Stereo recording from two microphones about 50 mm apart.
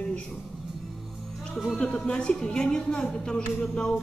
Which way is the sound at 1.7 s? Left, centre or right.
Centre.